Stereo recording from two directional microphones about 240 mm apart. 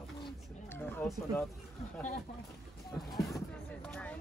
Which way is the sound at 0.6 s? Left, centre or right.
Centre.